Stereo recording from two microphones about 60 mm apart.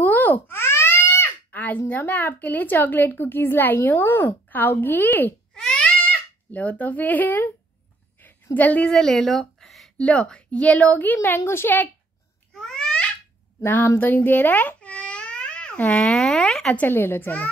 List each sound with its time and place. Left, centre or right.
0.0 s wail: left
1.5 s a sound: left
1.8 s a woman's voice: left
5.5 s a sound: centre
6.0 s speech: left
8.5 s speech: left
8.8 s a woman's voice: centre
9.9 s speech: centre
11.2 s a woman's voice: left
12.5 s babbling: centre
13.6 s speech: left
13.9 s babbling: left
16.1 s speech: centre
16.7 s a woman's voice: left